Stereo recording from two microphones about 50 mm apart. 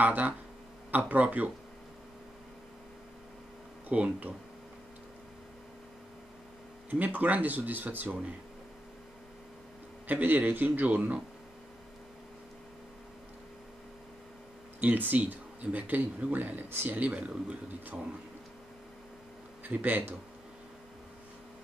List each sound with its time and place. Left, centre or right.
0.0 s speech: right
3.9 s a man's voice: right
6.9 s speech: right
10.0 s speech: right
14.8 s speech: right
17.1 s a man's voice: right
19.6 s speech: right